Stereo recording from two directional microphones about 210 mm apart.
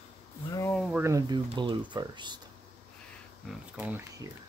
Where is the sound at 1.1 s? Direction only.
15° right (ahead or behind).